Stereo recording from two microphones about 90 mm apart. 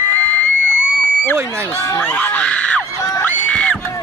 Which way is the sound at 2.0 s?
15° left (ahead or behind).